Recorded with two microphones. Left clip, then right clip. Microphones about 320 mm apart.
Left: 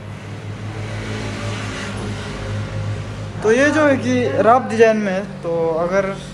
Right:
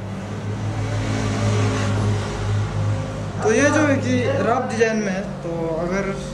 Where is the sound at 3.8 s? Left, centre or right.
Centre.